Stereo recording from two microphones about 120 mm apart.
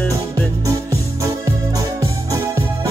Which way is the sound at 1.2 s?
25° right (ahead or behind).